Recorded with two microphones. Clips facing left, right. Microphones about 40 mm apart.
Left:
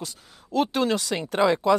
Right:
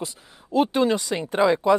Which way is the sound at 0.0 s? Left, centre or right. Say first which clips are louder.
Right 4 dB; centre.